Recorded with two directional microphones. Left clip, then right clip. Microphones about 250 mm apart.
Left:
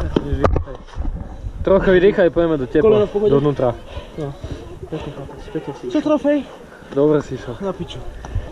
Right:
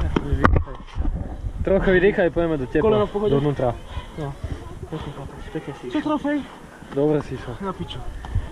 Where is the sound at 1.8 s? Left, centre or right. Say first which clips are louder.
Left 4 dB; centre.